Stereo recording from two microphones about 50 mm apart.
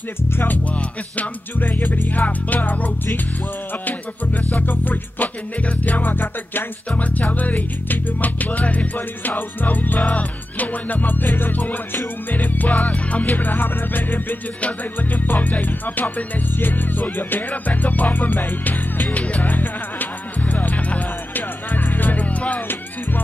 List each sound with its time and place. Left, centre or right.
1.1 s music: left
4.6 s music: left
5.6 s music: left
9.9 s music: left